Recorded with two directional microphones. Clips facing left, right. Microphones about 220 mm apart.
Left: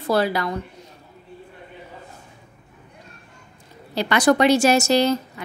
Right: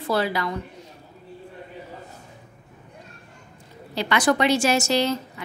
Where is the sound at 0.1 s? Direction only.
40° left (ahead or behind).